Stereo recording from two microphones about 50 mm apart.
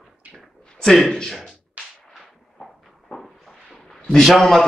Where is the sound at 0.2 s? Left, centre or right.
Right.